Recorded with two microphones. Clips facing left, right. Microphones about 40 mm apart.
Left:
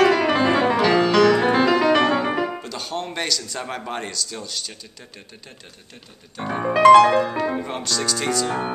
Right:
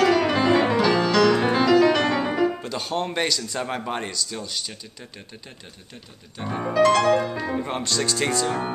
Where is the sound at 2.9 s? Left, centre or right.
Centre.